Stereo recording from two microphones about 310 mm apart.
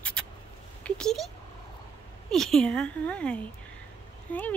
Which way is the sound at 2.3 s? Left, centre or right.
Centre.